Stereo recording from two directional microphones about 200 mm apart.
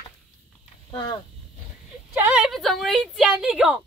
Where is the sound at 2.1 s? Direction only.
5° right (ahead or behind).